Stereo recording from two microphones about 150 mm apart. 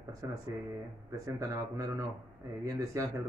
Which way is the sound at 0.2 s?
20° right (ahead or behind).